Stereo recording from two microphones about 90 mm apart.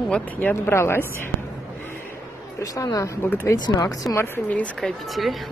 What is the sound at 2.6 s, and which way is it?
Speech, 40° left (ahead or behind).